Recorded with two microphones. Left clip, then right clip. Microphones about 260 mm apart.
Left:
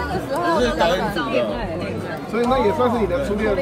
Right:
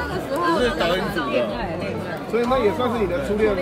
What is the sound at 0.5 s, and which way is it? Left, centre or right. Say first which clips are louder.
Speech: left 2 dB; centre.